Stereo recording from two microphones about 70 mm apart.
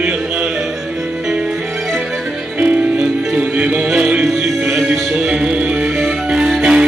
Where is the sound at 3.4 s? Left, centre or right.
Centre.